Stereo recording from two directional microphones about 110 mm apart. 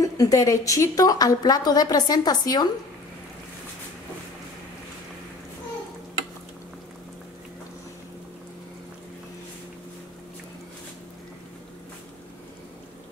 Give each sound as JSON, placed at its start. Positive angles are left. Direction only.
{"t": 0.0, "sound": "a woman's voice", "side_deg": 30}